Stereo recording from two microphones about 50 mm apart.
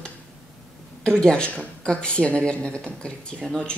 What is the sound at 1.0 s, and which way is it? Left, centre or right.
Speech, centre.